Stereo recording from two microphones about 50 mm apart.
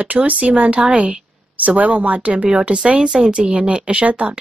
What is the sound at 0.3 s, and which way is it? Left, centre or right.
Speech, right.